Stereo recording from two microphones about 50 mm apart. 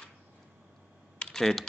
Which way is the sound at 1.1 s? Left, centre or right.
Centre.